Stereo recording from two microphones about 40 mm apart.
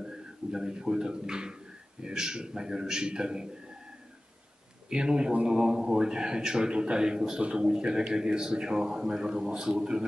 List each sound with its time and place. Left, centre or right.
0.0 s speech: centre
4.8 s speech: right